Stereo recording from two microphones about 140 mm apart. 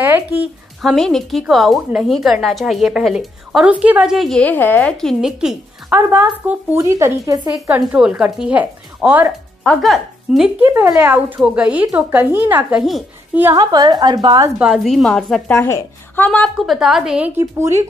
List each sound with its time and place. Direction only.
0.0 s a sound: 15° right (ahead or behind)
0.8 s a woman's voice: centre (ahead or behind); by 7.5 s 25° right (ahead or behind)
7.9 s speech: 10° right (ahead or behind)
9.6 s speech: centre (ahead or behind)
10.6 s a woman's voice: 15° right (ahead or behind)
13.6 s speech: 30° right (ahead or behind)
14.6 s a woman's voice: 5° right (ahead or behind)
15.5 s a woman's voice: 15° left (ahead or behind); by 17.3 s 5° right (ahead or behind)
17.4 s speech: 20° right (ahead or behind)